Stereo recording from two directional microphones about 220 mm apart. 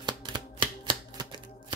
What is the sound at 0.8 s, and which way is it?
Typewriter, 20° right (ahead or behind).